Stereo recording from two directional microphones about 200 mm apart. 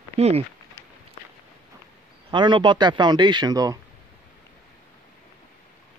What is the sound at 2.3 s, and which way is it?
A man's voice, 25° right (ahead or behind).